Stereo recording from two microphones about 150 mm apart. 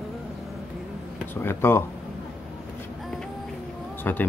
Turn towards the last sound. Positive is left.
turn(degrees=15)  # may be behind; listen again after turning